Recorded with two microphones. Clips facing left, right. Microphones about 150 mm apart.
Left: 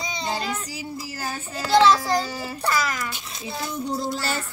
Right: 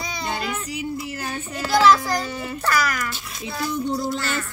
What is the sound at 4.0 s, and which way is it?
Music, 35° left (ahead or behind).